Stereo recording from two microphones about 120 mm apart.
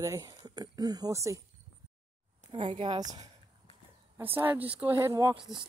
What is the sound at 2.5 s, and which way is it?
Speech, 45° right (ahead or behind).